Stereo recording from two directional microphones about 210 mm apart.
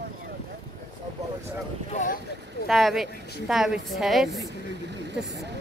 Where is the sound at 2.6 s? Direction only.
Centre (ahead or behind).